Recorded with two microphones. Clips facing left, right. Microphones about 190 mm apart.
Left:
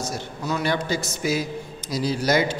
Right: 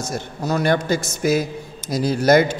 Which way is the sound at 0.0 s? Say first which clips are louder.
Right 3 dB; 45° right (ahead or behind).